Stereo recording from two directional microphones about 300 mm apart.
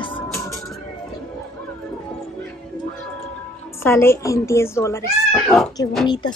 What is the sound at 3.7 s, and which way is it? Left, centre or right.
Speech, centre.